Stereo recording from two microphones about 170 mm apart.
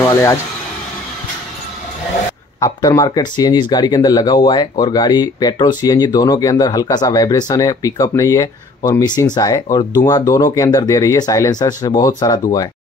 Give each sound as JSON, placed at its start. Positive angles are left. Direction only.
{"t": 0.0, "sound": "speech", "side_deg": 20}
{"t": 2.6, "sound": "speech", "side_deg": 20}